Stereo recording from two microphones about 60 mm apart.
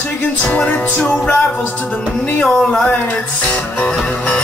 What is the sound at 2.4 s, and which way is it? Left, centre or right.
Speech, centre.